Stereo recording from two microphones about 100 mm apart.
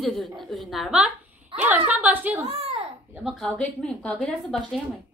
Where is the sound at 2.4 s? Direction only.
90° right.